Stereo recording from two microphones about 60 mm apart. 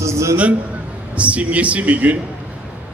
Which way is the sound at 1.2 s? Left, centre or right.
Right.